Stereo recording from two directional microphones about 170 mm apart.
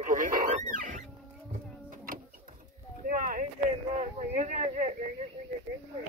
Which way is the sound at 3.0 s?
55° right (ahead or behind).